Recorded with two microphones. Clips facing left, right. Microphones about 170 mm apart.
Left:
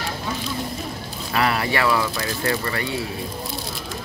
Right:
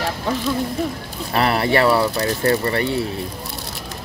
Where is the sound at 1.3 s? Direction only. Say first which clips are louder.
Right 4 dB; 35° right (ahead or behind).